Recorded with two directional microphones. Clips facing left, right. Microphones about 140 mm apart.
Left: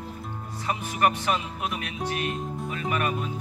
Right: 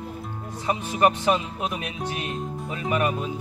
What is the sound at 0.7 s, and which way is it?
Music, 20° right (ahead or behind).